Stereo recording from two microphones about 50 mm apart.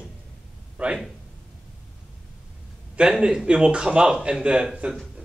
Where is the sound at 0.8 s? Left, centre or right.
Right.